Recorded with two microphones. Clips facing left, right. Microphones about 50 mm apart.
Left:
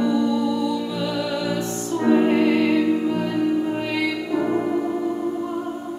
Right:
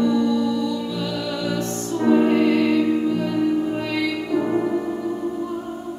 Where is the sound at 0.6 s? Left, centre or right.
Centre.